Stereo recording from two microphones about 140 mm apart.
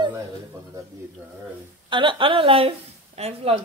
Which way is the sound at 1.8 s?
35° right (ahead or behind).